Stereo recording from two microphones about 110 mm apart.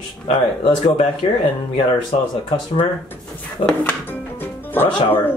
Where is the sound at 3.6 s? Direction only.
15° left (ahead or behind).